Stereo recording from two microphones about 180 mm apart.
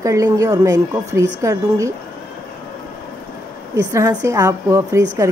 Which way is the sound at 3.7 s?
15° right (ahead or behind).